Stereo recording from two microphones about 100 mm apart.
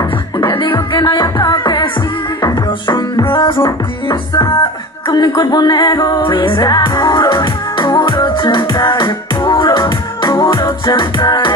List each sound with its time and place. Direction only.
0.4 s music: 50° left (ahead or behind)
4.1 s music: 45° left (ahead or behind)